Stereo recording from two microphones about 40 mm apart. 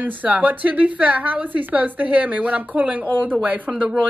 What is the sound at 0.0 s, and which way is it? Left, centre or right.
A woman's voice, right.